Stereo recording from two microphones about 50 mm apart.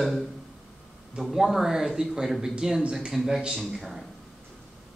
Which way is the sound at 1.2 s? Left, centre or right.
Centre.